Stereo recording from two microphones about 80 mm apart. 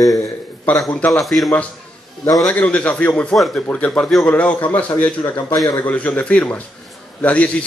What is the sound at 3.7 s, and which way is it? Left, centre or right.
Speech, centre.